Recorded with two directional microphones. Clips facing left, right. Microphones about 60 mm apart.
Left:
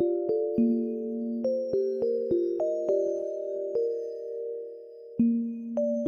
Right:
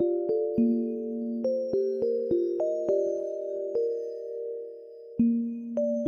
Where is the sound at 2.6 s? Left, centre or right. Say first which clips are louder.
Even; right.